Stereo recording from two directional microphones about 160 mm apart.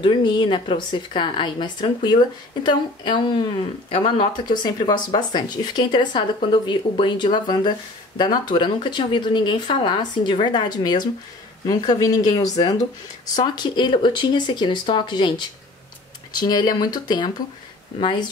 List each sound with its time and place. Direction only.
0.0 s speech: 30° left (ahead or behind)
13.4 s speech: 30° left (ahead or behind)